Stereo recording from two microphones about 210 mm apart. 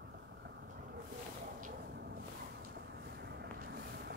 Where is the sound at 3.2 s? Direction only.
50° right (ahead or behind).